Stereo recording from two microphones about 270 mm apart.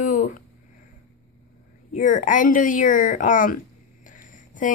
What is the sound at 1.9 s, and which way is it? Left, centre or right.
Speech, left.